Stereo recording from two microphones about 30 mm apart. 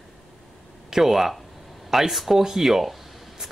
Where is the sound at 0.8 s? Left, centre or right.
Centre.